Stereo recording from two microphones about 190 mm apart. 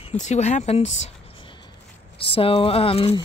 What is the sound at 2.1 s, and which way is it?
Speech, 30° left (ahead or behind).